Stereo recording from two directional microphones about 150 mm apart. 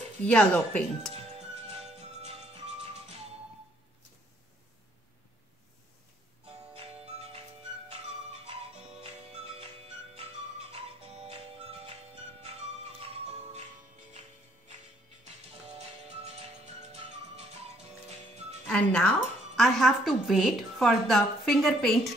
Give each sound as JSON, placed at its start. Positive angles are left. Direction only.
{"t": 0.2, "sound": "speech", "side_deg": 10}
{"t": 1.1, "sound": "music", "side_deg": -45}
{"t": 7.1, "sound": "music", "side_deg": -45}
{"t": 9.0, "sound": "music", "side_deg": -45}
{"t": 11.2, "sound": "music", "side_deg": -45}
{"t": 13.0, "sound": "music", "side_deg": -45}
{"t": 18.7, "sound": "music", "side_deg": 5}